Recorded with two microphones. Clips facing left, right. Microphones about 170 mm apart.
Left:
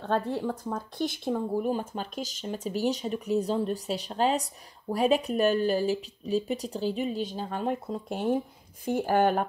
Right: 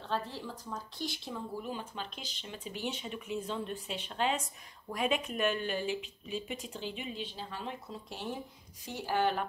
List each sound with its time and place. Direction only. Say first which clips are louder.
0.0 s speech: left 9 dB; 55° left (ahead or behind)